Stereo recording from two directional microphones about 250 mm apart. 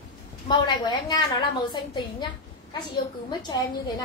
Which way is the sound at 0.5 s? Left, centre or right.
Centre.